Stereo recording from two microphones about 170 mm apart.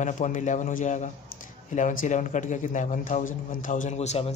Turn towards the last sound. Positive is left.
turn(degrees=40)  # may be behind; listen again after turning